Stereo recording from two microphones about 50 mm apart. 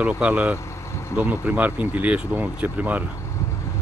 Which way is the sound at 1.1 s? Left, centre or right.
Right.